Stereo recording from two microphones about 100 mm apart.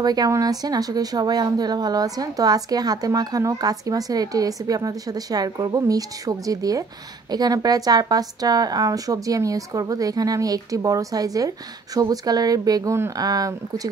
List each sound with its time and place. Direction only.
0.0 s speech: 40° right (ahead or behind)
12.9 s speech: 25° right (ahead or behind)
13.2 s speech: 40° right (ahead or behind)